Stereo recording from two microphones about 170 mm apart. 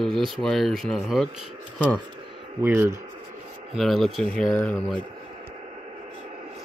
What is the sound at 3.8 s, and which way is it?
Speech, centre (ahead or behind).